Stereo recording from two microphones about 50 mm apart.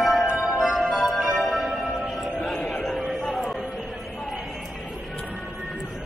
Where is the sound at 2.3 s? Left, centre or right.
Centre.